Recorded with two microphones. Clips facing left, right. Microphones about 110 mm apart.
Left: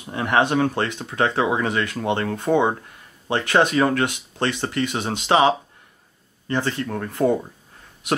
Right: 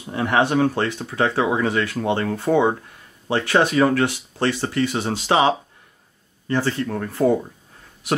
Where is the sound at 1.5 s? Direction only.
15° left (ahead or behind).